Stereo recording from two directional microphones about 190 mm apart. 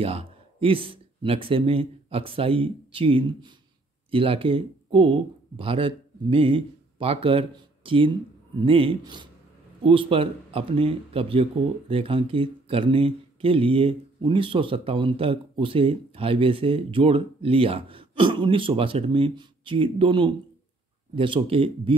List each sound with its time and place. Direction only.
0.0 s speech: 30° right (ahead or behind)